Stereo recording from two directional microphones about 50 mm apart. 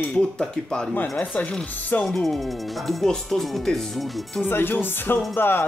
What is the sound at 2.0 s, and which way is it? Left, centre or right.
Speech, centre.